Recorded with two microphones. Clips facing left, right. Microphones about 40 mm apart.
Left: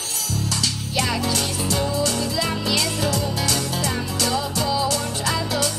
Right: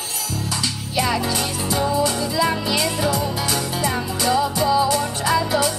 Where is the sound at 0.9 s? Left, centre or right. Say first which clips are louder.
Right 3 dB; centre.